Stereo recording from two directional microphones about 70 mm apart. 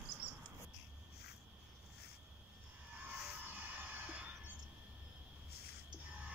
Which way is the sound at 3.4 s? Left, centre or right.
Right.